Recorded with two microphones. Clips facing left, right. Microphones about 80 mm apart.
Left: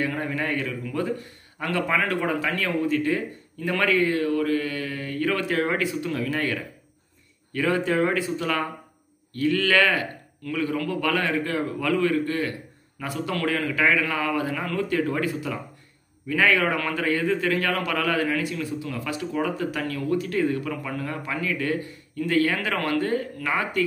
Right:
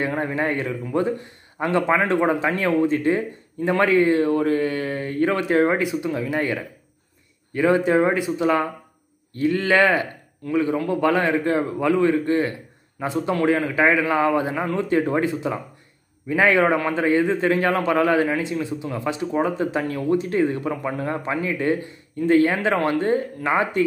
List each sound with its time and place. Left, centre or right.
0.0 s a man's voice: right